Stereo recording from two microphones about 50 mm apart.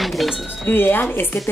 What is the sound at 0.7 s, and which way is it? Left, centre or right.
Speech, left.